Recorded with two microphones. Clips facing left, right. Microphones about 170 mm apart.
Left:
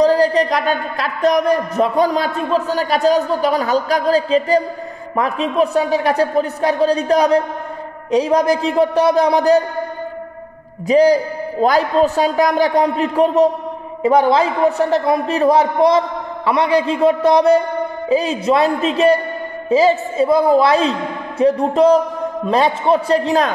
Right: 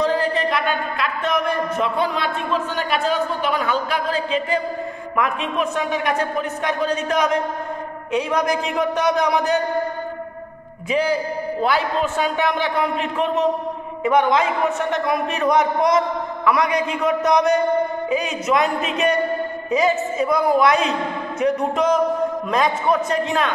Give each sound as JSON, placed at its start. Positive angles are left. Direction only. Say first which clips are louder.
{"t": 0.0, "sound": "speech", "louder": "left 7 dB", "side_deg": 35}
{"t": 10.9, "sound": "speech", "louder": "left 8 dB", "side_deg": 40}